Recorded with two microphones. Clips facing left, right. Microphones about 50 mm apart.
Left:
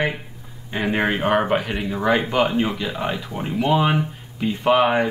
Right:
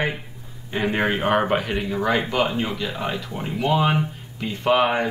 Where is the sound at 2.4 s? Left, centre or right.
Left.